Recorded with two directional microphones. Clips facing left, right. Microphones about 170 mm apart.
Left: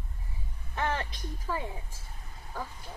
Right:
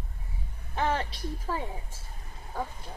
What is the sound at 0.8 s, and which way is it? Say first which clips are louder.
Speech: right 3 dB; 30° right (ahead or behind).